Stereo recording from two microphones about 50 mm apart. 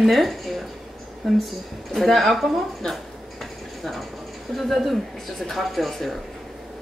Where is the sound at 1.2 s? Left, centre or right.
Centre.